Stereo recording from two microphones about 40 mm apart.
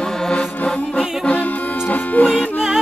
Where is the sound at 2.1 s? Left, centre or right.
Left.